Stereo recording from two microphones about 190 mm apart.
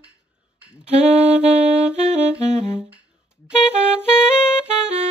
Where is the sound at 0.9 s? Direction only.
35° right (ahead or behind).